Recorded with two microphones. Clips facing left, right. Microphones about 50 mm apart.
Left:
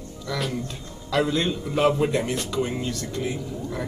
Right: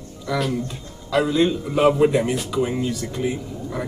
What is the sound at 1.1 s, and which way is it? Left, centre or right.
Speech, centre.